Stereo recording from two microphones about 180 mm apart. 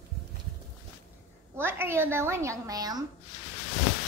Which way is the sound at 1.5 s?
10° right (ahead or behind).